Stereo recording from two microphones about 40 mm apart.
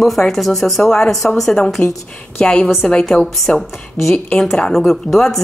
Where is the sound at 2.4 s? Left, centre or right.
Left.